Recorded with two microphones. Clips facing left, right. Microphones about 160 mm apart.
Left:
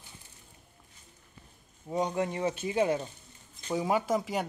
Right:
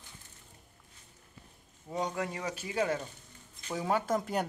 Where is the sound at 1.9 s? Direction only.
20° left (ahead or behind).